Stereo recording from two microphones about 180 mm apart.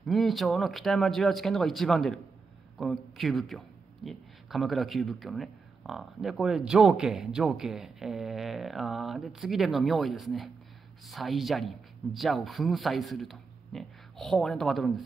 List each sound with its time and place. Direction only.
0.0 s a man's voice: centre (ahead or behind)